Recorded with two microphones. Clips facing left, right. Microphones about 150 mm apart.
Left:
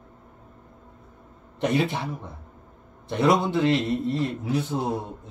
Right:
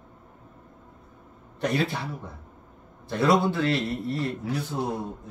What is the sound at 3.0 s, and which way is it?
A man's voice, 20° left (ahead or behind).